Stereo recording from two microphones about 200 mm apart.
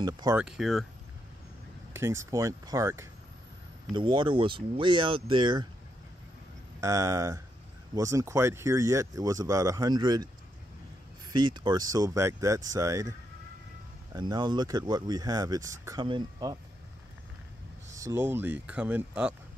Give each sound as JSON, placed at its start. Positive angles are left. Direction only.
{"t": 0.0, "sound": "speech", "side_deg": -20}
{"t": 0.4, "sound": "speech", "side_deg": -5}
{"t": 2.0, "sound": "speech", "side_deg": -15}
{"t": 6.8, "sound": "speech", "side_deg": -15}
{"t": 14.1, "sound": "speech", "side_deg": -20}
{"t": 18.0, "sound": "speech", "side_deg": -10}